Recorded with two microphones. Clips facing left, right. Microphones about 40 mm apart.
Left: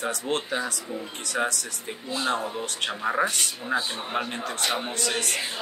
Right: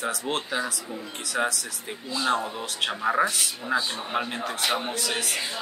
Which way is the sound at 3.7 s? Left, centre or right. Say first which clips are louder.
Right 1 dB; left.